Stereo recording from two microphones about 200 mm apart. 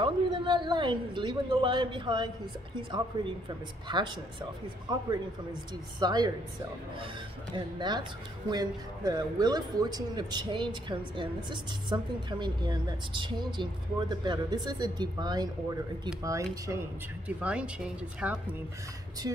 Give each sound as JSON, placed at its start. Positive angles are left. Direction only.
{"t": 0.0, "sound": "a woman's voice", "side_deg": -25}
{"t": 5.9, "sound": "a woman's voice", "side_deg": -20}
{"t": 7.5, "sound": "a woman's voice", "side_deg": -20}
{"t": 17.4, "sound": "speech", "side_deg": -5}